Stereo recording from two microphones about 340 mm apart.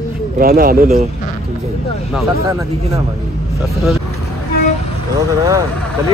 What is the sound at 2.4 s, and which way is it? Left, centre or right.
Speech, centre.